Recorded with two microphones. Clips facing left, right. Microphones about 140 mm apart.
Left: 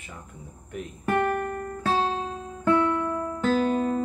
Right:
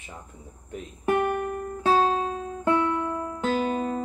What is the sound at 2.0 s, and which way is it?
Music, 45° right (ahead or behind).